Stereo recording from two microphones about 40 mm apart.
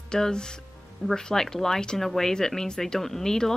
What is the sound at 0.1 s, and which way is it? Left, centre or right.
A woman's voice, centre.